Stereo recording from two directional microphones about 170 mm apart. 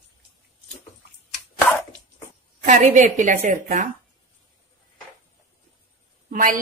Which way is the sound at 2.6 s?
45° right (ahead or behind).